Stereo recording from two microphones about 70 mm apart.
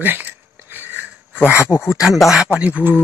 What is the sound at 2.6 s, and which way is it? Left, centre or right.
Speech, right.